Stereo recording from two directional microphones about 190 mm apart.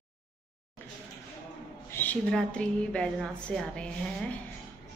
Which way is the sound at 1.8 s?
10° left (ahead or behind).